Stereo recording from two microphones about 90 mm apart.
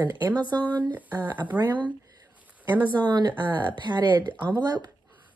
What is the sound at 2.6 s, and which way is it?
Speech, 25° right (ahead or behind).